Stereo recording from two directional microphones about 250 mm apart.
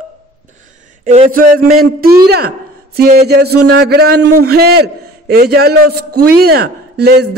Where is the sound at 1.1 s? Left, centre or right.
Right.